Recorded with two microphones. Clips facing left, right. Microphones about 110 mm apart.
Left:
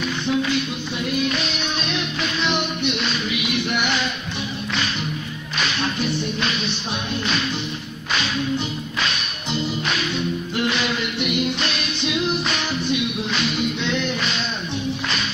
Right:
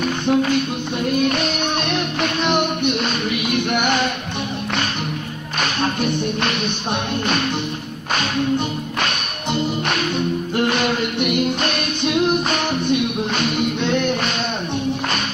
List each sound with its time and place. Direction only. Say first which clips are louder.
0.0 s music: right 4 dB; 50° right (ahead or behind)
5.6 s music: right 3 dB; 50° right (ahead or behind)